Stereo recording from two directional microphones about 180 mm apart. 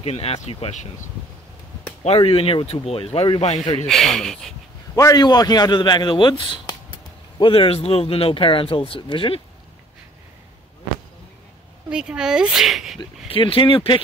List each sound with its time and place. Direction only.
0.0 s speech: 35° left (ahead or behind)
2.0 s speech: 30° left (ahead or behind)
3.8 s speech: centre (ahead or behind)
4.9 s a man's voice: 20° left (ahead or behind)
11.9 s speech: 5° right (ahead or behind)
13.3 s a man's voice: 30° left (ahead or behind)